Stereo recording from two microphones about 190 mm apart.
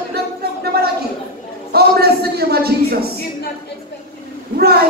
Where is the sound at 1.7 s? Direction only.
55° right (ahead or behind).